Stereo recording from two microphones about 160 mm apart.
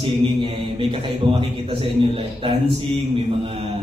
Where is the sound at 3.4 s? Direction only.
35° right (ahead or behind).